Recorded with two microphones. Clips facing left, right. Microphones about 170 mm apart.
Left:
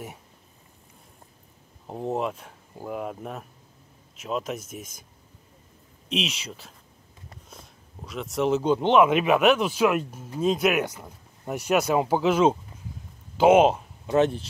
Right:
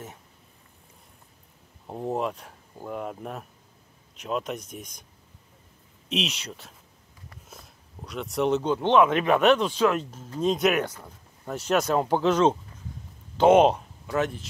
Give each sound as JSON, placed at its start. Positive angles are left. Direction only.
{"t": 1.9, "sound": "speech", "side_deg": 0}
{"t": 6.0, "sound": "speech", "side_deg": 0}
{"t": 7.4, "sound": "a sound", "side_deg": 0}
{"t": 8.6, "sound": "speech", "side_deg": 15}
{"t": 14.0, "sound": "speech", "side_deg": 25}